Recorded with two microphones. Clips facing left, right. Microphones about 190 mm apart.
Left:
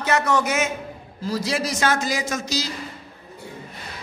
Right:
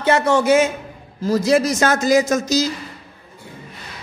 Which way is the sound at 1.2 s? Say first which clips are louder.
Right 9 dB; 45° right (ahead or behind).